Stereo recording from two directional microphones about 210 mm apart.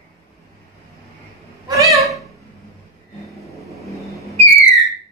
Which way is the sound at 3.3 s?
Centre (ahead or behind).